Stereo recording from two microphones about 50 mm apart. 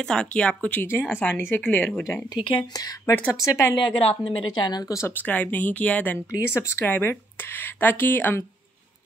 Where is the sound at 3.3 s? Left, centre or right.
Left.